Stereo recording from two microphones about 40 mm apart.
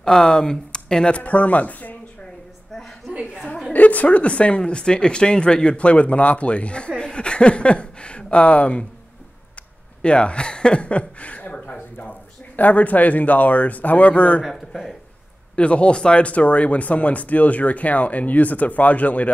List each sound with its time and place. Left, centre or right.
0.0 s speech: centre
1.1 s speech: left
3.7 s speech: left
7.0 s a sound: left
10.0 s speech: left
14.4 s speech: centre
15.5 s speech: left